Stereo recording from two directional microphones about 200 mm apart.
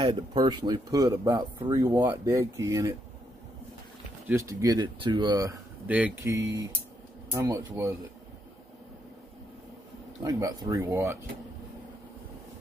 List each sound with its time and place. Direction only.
0.0 s speech: 25° right (ahead or behind)
4.3 s speech: 15° right (ahead or behind)
10.2 s speech: 15° right (ahead or behind)